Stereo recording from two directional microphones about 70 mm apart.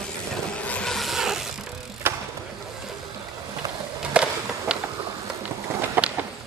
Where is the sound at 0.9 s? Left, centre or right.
Centre.